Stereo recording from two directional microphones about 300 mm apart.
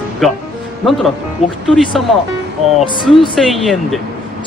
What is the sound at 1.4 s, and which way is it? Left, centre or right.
Speech, left.